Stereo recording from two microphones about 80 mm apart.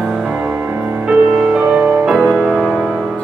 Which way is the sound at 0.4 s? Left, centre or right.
Right.